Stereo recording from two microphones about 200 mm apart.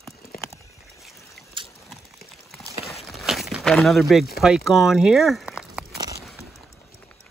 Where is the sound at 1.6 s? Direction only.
25° right (ahead or behind).